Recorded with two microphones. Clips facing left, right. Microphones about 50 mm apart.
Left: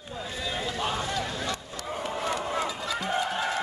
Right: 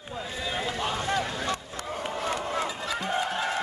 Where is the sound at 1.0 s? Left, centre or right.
Right.